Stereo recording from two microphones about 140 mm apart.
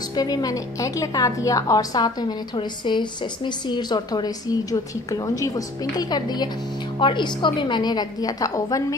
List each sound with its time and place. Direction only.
0.1 s a woman's voice: 30° left (ahead or behind)